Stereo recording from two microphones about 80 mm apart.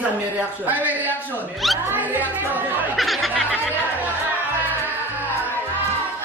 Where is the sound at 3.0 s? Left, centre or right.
Centre.